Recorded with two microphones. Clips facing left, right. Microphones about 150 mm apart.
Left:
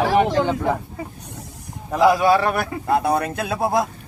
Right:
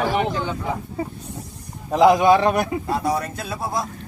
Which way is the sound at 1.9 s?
20° right (ahead or behind).